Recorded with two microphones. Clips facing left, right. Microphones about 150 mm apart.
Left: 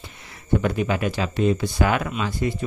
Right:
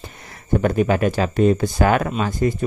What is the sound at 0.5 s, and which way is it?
Speech, 45° right (ahead or behind).